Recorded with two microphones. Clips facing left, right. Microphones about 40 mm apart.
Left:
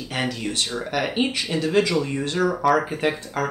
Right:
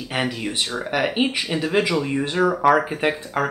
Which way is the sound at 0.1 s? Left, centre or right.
Centre.